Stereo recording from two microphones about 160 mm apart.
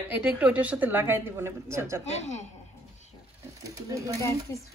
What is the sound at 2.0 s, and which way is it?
Speech, 45° left (ahead or behind).